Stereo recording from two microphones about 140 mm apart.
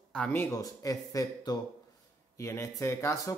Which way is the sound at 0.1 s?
10° left (ahead or behind).